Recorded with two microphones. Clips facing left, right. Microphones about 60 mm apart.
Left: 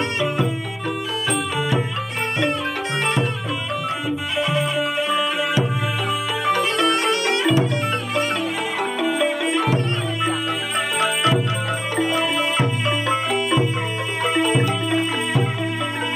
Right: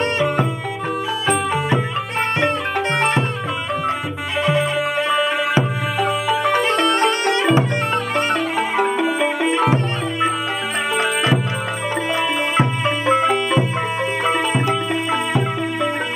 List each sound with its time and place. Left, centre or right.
1.2 s music: right
4.4 s music: right
11.0 s music: right
12.5 s music: right